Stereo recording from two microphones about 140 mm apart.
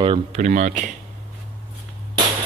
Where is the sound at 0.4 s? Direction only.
60° right (ahead or behind).